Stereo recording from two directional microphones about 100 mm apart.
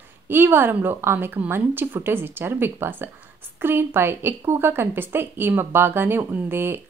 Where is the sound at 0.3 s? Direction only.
20° right (ahead or behind).